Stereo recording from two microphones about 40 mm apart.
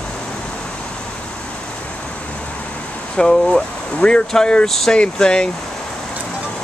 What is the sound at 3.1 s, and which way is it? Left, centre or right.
Speech, centre.